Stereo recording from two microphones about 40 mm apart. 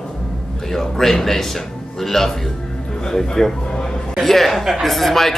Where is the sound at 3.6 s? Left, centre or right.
Centre.